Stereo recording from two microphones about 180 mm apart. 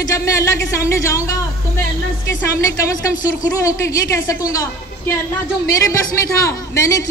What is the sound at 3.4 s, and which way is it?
A woman's voice, 15° left (ahead or behind).